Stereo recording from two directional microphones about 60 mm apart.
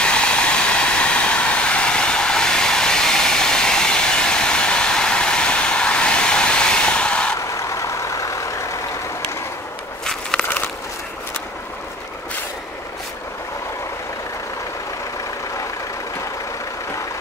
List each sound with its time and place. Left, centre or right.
0.0 s vehicle: centre
7.3 s vehicle: left
10.3 s a sound: centre